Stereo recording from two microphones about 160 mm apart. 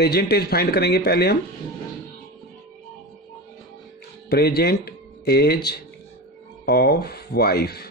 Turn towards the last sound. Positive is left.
turn(degrees=80)